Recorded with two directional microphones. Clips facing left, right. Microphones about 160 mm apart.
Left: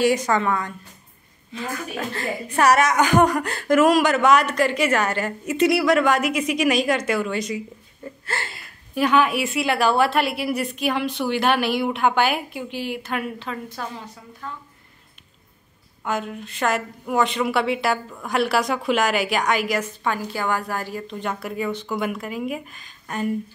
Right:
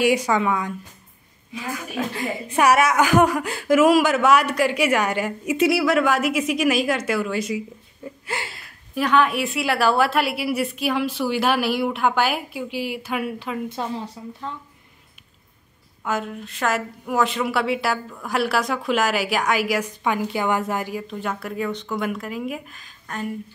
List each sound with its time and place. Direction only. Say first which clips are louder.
0.0 s a woman's voice: even; 10° right (ahead or behind)
8.5 s a woman's voice: left 4 dB; centre (ahead or behind)
13.7 s a woman's voice: right 5 dB; 25° right (ahead or behind)
16.0 s a woman's voice: even; centre (ahead or behind); by 20.9 s 20° right (ahead or behind)
20.9 s a woman's voice: right 1 dB; 5° right (ahead or behind)